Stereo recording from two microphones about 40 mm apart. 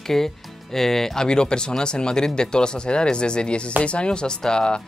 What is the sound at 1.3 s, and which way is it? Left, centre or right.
Speech, left.